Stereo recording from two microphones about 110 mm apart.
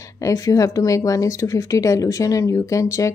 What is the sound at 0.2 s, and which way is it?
Speech, 30° left (ahead or behind).